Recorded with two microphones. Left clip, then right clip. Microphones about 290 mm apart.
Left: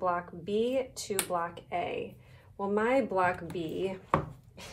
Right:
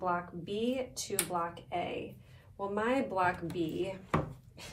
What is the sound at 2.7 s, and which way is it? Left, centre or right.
Speech, left.